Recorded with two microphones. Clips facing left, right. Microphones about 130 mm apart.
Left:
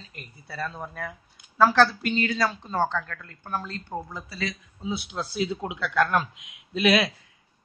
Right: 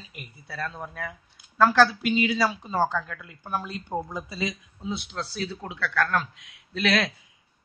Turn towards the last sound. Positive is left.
turn(degrees=10)  # may be behind; listen again after turning